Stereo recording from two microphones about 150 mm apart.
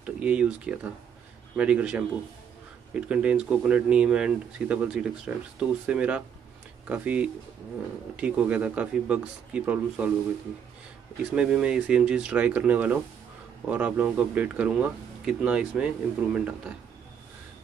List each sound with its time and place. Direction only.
0.0 s speech: 5° right (ahead or behind)
11.3 s speech: 5° right (ahead or behind)